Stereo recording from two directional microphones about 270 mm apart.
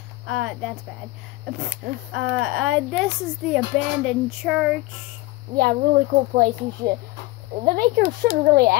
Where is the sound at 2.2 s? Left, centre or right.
Centre.